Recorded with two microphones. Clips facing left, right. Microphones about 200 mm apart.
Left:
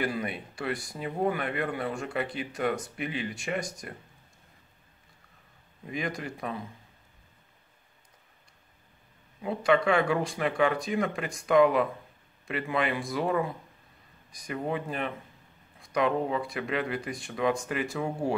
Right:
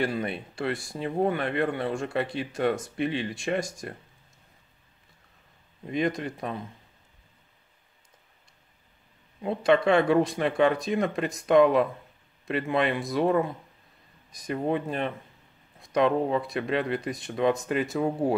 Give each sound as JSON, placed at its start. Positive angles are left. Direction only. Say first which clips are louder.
{"t": 0.0, "sound": "speech", "louder": "right 3 dB", "side_deg": -30}
{"t": 5.9, "sound": "speech", "louder": "right 6 dB", "side_deg": -25}
{"t": 9.4, "sound": "speech", "louder": "right 2 dB", "side_deg": -25}